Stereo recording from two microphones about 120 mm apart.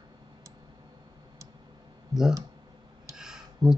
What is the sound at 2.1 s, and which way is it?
Speech, 30° right (ahead or behind).